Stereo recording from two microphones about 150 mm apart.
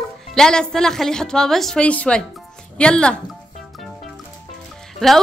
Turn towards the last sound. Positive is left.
turn(degrees=5)  # may be behind; listen again after turning